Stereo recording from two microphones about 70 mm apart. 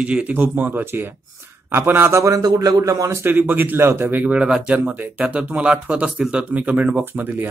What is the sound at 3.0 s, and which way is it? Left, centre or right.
Speech, right.